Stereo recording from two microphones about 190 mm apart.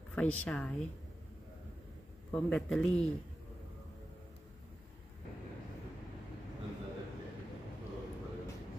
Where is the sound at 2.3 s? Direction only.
5° left (ahead or behind).